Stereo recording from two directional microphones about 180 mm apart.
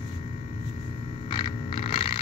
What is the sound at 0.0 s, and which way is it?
Vehicle, 30° left (ahead or behind).